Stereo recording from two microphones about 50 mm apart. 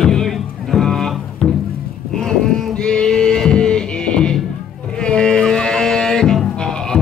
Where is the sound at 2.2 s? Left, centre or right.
Centre.